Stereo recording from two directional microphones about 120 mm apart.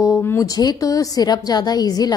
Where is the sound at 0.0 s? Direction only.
20° left (ahead or behind).